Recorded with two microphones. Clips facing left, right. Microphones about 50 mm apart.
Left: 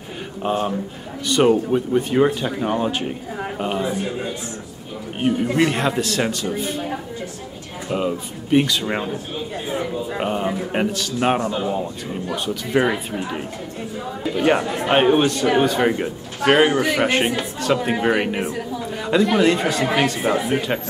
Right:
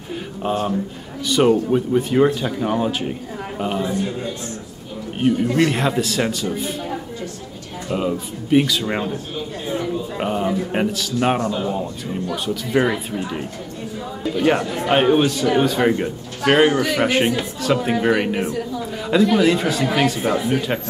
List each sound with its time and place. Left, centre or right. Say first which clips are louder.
0.4 s a man's voice: even; centre
7.9 s a man's voice: even; centre
20.2 s a man's voice: even; centre